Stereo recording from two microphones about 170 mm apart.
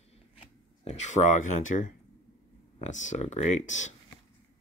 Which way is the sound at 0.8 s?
45° left (ahead or behind).